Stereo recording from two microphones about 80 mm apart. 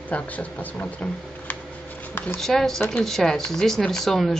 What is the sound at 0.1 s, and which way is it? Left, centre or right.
Speech, centre.